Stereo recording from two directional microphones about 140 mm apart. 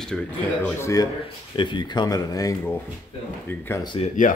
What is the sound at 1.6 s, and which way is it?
Speech, 35° left (ahead or behind).